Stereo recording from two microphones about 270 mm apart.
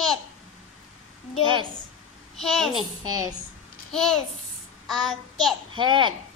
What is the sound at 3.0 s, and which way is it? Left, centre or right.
Speech, centre.